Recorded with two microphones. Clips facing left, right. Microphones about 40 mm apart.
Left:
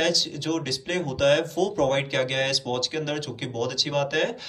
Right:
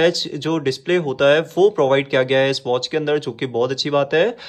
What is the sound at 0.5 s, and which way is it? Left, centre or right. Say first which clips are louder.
Speech: right 10 dB; right.